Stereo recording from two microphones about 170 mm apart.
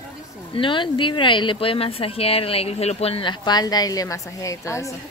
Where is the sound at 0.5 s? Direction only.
30° left (ahead or behind).